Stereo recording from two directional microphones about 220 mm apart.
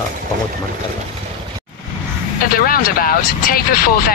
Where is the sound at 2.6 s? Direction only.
40° left (ahead or behind).